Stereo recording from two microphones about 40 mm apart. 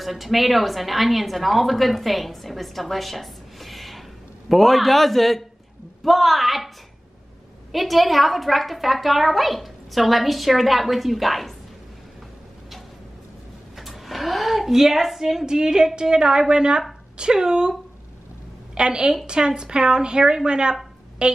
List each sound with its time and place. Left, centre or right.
0.0 s a woman's voice: centre
7.7 s a woman's voice: centre
13.7 s a woman's voice: centre
18.8 s a woman's voice: right